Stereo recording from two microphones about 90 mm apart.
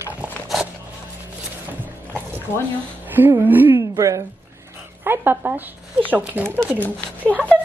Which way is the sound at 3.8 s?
40° right (ahead or behind).